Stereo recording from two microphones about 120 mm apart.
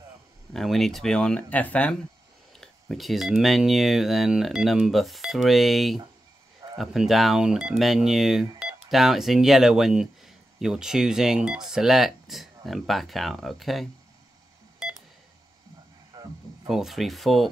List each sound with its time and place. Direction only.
0.5 s speech: centre (ahead or behind)
14.8 s beep: 5° right (ahead or behind)
16.1 s a sound: 35° right (ahead or behind)
16.6 s speech: 5° right (ahead or behind)